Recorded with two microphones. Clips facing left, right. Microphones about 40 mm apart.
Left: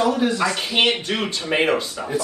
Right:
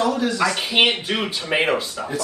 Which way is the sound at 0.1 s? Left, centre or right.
Left.